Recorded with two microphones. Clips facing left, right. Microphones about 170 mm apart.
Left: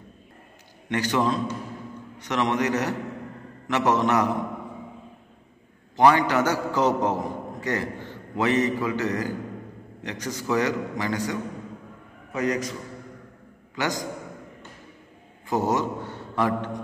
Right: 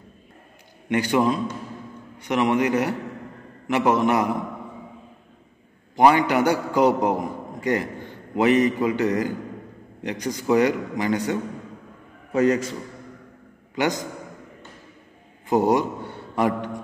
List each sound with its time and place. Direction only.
0.8 s a man's voice: 10° right (ahead or behind)
5.9 s a man's voice: 15° right (ahead or behind)
12.3 s a man's voice: 30° right (ahead or behind)
13.7 s a man's voice: 20° right (ahead or behind)
15.5 s a man's voice: 15° right (ahead or behind)